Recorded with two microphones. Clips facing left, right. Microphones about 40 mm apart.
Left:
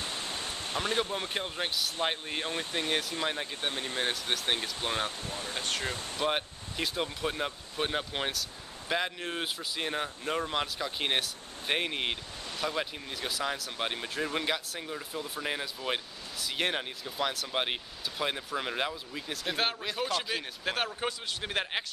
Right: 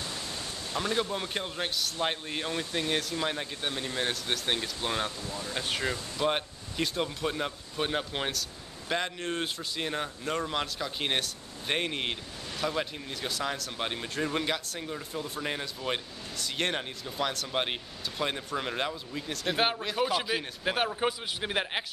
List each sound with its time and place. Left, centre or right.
0.0 s pink noise: left
0.7 s speech: left
1.3 s speech: centre
3.6 s speech: left
4.0 s speech: centre
4.8 s speech: centre
5.2 s speech: left
5.6 s speech: centre
6.2 s speech: centre
19.5 s speech: centre
19.8 s speech: centre